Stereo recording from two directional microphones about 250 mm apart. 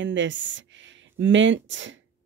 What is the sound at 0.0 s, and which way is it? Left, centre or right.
Speech, right.